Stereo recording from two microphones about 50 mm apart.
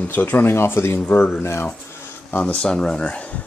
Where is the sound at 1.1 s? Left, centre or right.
Left.